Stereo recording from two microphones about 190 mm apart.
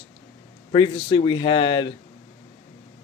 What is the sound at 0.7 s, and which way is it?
Speech, 30° left (ahead or behind).